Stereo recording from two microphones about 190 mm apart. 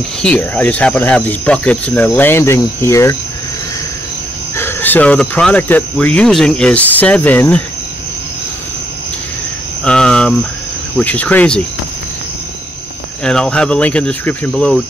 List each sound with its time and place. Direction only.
0.2 s speech: 5° left (ahead or behind)
4.6 s speech: 10° left (ahead or behind)
9.8 s cricket: 5° left (ahead or behind)
11.0 s speech: 5° left (ahead or behind)
13.2 s speech: 5° left (ahead or behind)